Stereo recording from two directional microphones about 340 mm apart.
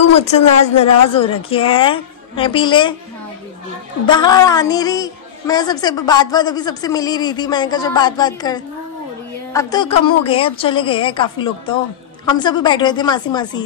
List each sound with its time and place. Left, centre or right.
0.2 s a woman's voice: centre
4.0 s a woman's voice: centre